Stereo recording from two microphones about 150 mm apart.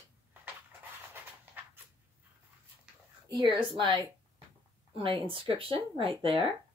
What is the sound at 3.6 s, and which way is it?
Speech, 35° right (ahead or behind).